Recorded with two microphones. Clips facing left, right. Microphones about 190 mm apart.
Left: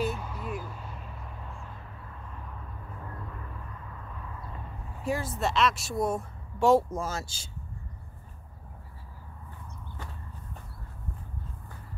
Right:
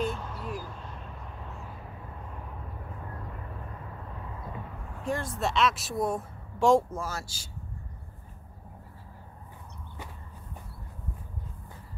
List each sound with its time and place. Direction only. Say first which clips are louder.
0.0 s a sound: even; 10° left (ahead or behind)
5.0 s speech: left 1 dB; 5° left (ahead or behind)
6.9 s speech: left 2 dB; 20° left (ahead or behind)